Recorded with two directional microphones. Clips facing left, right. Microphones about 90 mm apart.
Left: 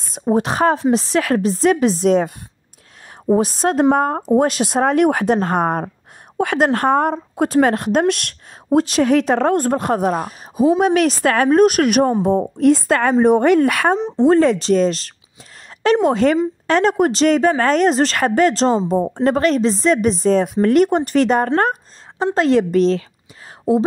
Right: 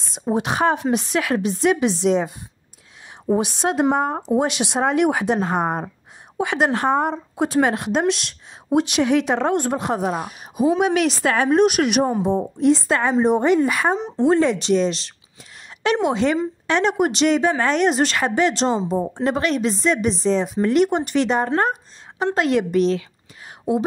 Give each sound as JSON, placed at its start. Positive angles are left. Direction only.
{"t": 0.1, "sound": "speech", "side_deg": 45}
{"t": 3.3, "sound": "speech", "side_deg": 40}
{"t": 3.9, "sound": "a woman's voice", "side_deg": 50}
{"t": 6.3, "sound": "a woman's voice", "side_deg": 45}
{"t": 8.6, "sound": "speech", "side_deg": 35}
{"t": 10.5, "sound": "a woman's voice", "side_deg": 30}
{"t": 10.9, "sound": "a woman's voice", "side_deg": 45}
{"t": 14.2, "sound": "a woman's voice", "side_deg": 40}
{"t": 22.2, "sound": "speech", "side_deg": 35}